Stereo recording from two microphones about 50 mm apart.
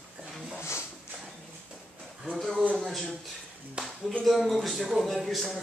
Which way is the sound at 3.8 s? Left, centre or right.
Right.